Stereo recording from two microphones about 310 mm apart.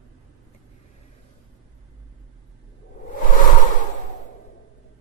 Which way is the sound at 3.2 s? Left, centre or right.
Left.